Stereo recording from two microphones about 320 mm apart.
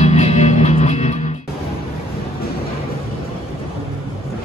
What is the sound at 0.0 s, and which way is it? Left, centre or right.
Music, centre.